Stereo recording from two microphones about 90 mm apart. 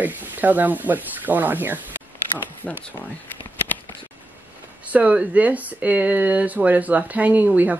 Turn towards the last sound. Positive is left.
turn(degrees=-20)  # may be behind; listen again after turning